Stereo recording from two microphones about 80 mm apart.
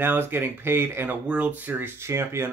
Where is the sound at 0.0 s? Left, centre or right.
Right.